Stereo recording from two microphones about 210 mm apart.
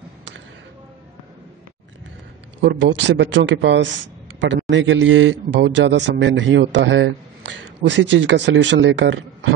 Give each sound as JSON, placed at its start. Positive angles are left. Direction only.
{"t": 2.6, "sound": "a man's voice", "side_deg": -60}